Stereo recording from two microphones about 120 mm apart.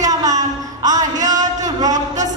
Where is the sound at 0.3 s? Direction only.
90° right.